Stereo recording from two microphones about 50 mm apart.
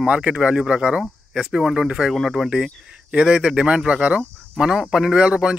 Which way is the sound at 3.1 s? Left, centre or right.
Centre.